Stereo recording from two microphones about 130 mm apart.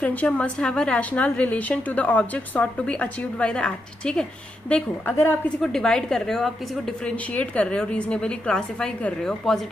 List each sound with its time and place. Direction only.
0.0 s a woman's voice: 10° left (ahead or behind)
5.6 s a woman's voice: 5° left (ahead or behind)